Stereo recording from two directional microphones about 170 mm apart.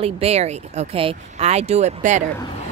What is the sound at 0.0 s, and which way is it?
A woman's voice, 35° right (ahead or behind).